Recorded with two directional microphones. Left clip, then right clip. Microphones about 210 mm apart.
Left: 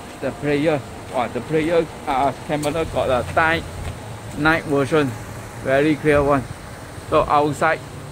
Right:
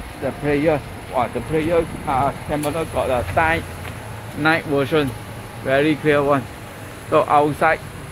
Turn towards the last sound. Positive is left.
turn(degrees=-10)  # may be behind; listen again after turning